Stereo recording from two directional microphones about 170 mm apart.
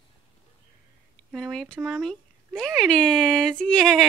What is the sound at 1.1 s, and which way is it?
Speech, 5° left (ahead or behind).